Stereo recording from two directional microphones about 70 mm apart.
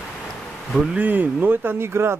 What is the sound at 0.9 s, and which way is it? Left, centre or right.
Speech, right.